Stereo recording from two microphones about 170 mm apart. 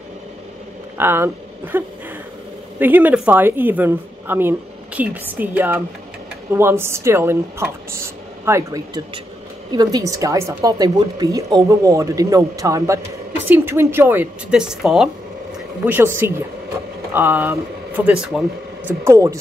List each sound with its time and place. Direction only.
0.9 s a woman's voice: 15° right (ahead or behind)
15.8 s a woman's voice: 10° right (ahead or behind)
19.0 s a woman's voice: 15° right (ahead or behind)